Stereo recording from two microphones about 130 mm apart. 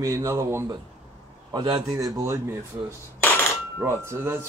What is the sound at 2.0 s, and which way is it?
Speech, 25° right (ahead or behind).